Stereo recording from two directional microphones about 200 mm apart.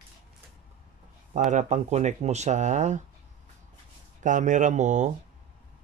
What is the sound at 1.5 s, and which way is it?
Speech, 35° right (ahead or behind).